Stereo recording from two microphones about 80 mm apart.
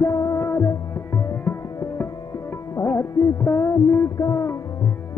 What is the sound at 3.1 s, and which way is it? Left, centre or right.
Music, left.